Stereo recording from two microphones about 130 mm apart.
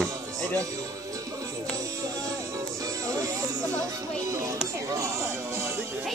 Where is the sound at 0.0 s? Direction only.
25° right (ahead or behind).